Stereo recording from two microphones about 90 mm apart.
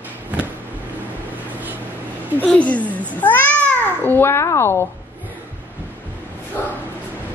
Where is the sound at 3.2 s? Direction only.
20° left (ahead or behind).